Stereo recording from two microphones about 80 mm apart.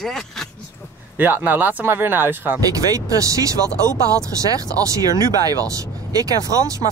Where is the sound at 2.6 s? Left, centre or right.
Right.